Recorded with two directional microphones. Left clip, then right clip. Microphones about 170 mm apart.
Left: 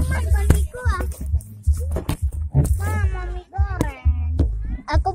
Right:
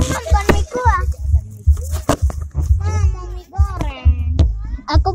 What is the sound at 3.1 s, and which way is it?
Music, 40° right (ahead or behind).